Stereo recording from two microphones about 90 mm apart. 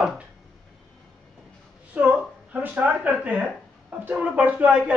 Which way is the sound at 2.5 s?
15° right (ahead or behind).